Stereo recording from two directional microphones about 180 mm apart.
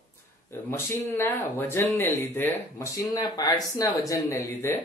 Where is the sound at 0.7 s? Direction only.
15° left (ahead or behind).